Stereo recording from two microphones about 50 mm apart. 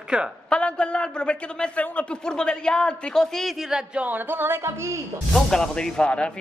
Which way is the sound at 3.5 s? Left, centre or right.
Centre.